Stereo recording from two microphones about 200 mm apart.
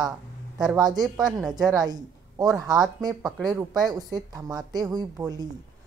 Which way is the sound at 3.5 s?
20° right (ahead or behind).